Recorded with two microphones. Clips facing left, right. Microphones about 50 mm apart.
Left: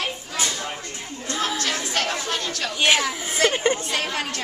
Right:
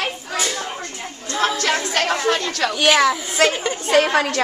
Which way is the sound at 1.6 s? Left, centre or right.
Right.